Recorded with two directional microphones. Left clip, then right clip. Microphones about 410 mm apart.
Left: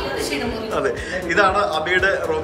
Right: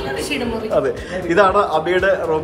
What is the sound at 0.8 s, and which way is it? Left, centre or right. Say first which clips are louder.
A man's voice: right 2 dB; centre.